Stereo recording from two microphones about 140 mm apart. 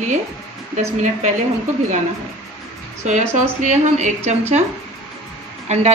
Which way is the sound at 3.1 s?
60° right (ahead or behind).